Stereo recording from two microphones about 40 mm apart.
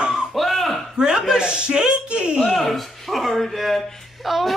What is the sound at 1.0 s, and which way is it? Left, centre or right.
A man's voice, centre.